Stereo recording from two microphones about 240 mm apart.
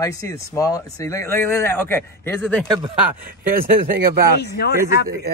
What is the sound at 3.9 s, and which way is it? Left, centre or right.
Speech, right.